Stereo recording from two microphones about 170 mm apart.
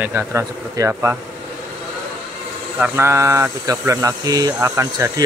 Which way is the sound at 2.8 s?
15° right (ahead or behind).